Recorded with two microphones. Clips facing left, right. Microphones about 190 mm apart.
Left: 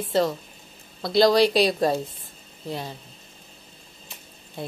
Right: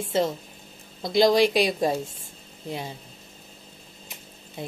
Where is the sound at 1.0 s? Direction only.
20° right (ahead or behind).